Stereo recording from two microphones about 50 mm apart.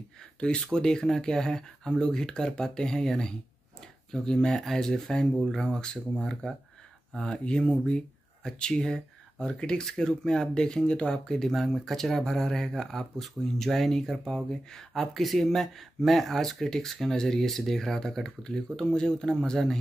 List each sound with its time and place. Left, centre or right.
0.4 s speech: centre
5.4 s speech: centre
5.7 s speech: centre
7.2 s speech: centre